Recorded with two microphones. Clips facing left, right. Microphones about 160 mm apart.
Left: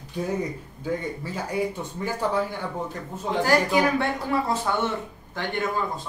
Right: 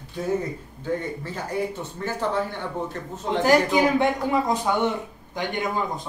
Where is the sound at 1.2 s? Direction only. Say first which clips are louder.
Left 1 dB; 10° left (ahead or behind).